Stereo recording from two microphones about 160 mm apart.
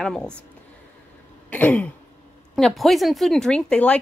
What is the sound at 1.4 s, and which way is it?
Speech, 10° left (ahead or behind).